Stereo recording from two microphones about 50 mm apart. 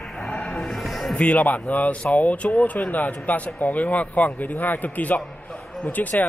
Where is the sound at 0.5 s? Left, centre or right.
Centre.